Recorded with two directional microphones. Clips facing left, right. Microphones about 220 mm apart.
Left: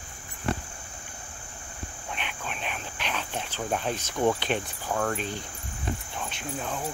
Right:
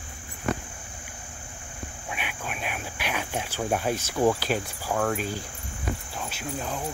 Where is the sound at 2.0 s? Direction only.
10° right (ahead or behind).